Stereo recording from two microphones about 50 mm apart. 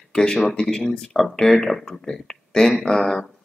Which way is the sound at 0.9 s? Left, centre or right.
Centre.